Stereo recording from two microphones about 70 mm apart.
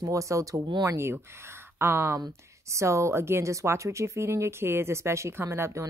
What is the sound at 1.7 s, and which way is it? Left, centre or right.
Speech, right.